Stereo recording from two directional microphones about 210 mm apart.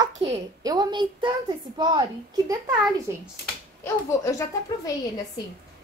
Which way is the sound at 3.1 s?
10° right (ahead or behind).